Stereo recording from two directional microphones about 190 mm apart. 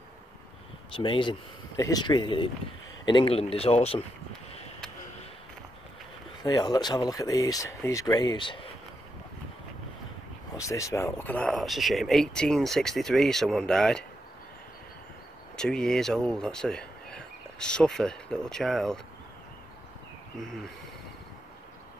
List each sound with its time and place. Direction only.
0.9 s speech: 25° left (ahead or behind)
6.4 s speech: 20° left (ahead or behind)
10.7 s speech: 15° left (ahead or behind)
15.5 s speech: 5° left (ahead or behind)
20.3 s speech: centre (ahead or behind)